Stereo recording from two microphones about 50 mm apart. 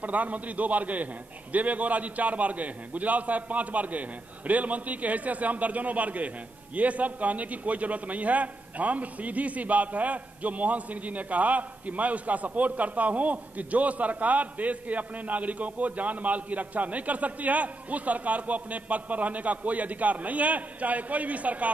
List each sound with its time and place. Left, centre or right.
0.0 s a man's voice: right